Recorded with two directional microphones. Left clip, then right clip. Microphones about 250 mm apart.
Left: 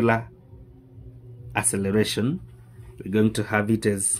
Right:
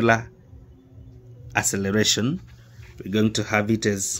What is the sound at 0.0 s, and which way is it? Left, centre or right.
Speech, centre.